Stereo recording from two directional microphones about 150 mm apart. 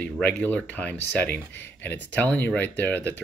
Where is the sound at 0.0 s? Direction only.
10° left (ahead or behind).